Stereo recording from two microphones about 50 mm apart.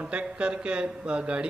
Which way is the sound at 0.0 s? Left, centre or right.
Right.